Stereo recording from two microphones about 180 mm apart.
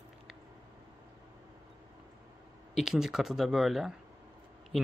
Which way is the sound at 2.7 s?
Centre (ahead or behind).